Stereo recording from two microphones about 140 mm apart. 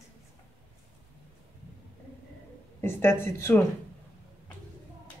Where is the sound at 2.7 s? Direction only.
15° left (ahead or behind).